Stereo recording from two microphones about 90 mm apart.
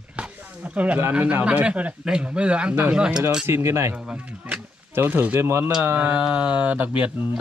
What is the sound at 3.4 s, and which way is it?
Speech, 30° right (ahead or behind).